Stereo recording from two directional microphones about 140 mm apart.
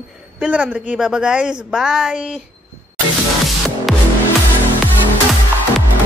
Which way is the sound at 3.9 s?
Centre (ahead or behind).